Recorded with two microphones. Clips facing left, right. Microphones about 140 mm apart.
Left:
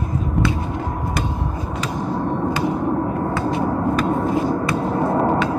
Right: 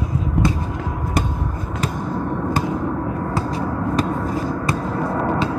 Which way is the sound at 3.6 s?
25° left (ahead or behind).